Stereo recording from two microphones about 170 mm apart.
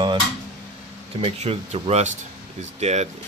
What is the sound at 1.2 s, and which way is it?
Speech, 35° right (ahead or behind).